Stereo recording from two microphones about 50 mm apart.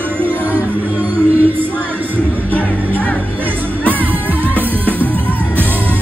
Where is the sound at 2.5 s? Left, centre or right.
Left.